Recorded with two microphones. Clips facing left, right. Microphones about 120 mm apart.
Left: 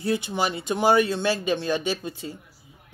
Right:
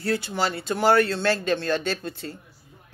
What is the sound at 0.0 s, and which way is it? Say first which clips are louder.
A woman's voice: even; 20° left (ahead or behind).